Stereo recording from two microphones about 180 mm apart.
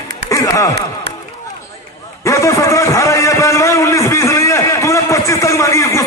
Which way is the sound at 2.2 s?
15° left (ahead or behind).